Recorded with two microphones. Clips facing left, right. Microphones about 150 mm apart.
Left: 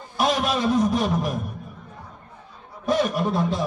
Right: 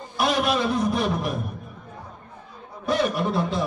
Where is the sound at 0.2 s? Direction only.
45° left (ahead or behind).